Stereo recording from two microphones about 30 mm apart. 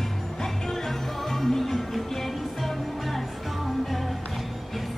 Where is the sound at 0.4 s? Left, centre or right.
Centre.